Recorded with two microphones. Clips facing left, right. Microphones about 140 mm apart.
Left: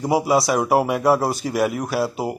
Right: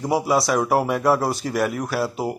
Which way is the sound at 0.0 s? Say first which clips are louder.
Left 2 dB; 5° left (ahead or behind).